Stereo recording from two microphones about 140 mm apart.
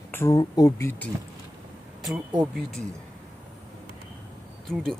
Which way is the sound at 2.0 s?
5° right (ahead or behind).